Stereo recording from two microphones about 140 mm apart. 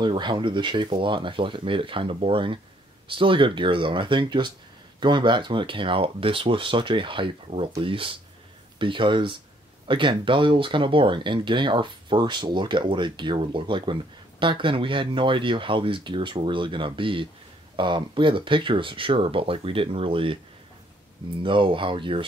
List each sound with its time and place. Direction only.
0.0 s speech: 35° right (ahead or behind)
21.4 s speech: 35° right (ahead or behind)